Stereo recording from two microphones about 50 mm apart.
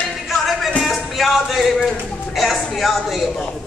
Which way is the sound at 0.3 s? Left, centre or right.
Centre.